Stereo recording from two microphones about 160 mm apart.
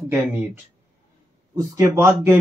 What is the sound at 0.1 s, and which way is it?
Speech, 15° right (ahead or behind).